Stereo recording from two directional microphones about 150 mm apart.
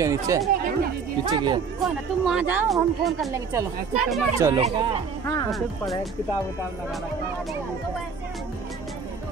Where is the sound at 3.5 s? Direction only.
20° right (ahead or behind).